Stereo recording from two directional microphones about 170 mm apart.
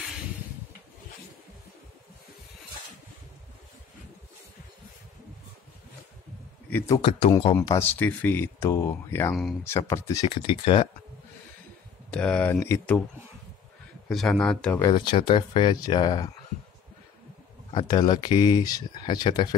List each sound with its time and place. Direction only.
7.0 s speech: 35° left (ahead or behind)
7.6 s speech: 15° left (ahead or behind)
9.3 s speech: centre (ahead or behind)
9.7 s speech: 15° left (ahead or behind)
10.2 s speech: 30° left (ahead or behind)
12.1 s speech: 5° left (ahead or behind)
14.0 s speech: centre (ahead or behind)
14.8 s speech: 30° left (ahead or behind)
17.7 s speech: 25° left (ahead or behind)